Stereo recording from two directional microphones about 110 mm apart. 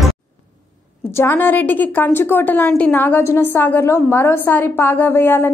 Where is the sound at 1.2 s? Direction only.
20° left (ahead or behind).